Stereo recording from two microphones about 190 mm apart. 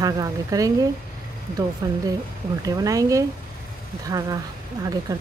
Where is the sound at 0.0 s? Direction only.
20° right (ahead or behind).